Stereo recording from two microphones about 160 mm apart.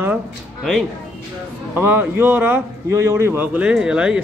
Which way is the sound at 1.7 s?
15° right (ahead or behind).